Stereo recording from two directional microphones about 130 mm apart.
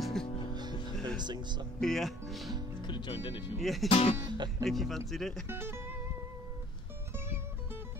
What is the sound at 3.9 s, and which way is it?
Speech, 50° left (ahead or behind).